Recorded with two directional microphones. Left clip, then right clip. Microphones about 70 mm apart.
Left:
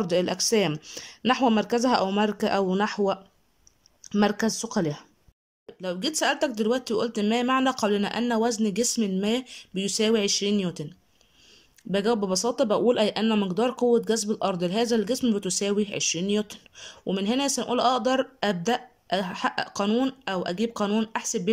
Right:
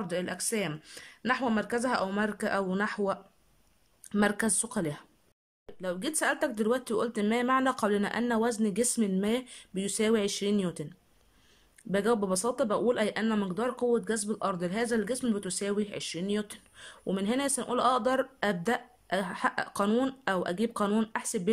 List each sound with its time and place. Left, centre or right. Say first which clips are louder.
0.0 s speech: left 9 dB; left; by 10.9 s centre
11.9 s speech: left 3 dB; centre